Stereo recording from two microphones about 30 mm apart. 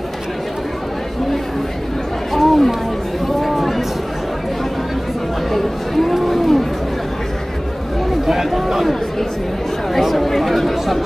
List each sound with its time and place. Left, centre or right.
2.3 s chatter: centre
3.3 s a sound: centre
5.5 s chatter: centre
6.1 s run: centre
8.3 s a sound: centre
9.9 s chatter: centre